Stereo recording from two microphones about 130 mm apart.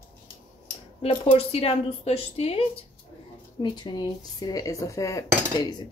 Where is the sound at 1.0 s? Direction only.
50° left (ahead or behind).